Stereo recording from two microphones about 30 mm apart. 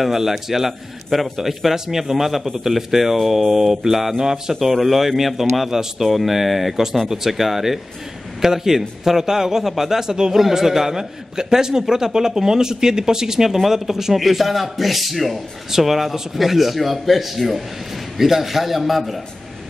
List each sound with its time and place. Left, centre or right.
0.0 s a man's voice: centre
4.6 s a man's voice: centre
14.1 s speech: centre